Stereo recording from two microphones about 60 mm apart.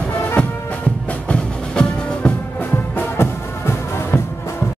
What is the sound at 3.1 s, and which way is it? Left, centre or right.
Music, left.